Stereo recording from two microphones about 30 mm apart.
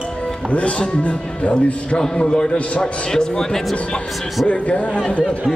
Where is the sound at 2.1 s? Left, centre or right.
Left.